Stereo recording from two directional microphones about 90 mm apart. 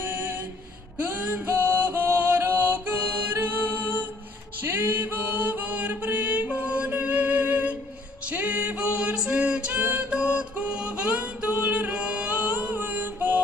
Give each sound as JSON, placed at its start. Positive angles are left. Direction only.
{"t": 0.9, "sound": "music", "side_deg": -15}